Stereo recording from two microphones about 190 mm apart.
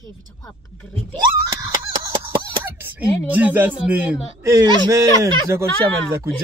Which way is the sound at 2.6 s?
10° right (ahead or behind).